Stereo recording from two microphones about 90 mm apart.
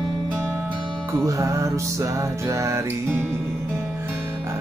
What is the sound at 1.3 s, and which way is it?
Music, 35° right (ahead or behind).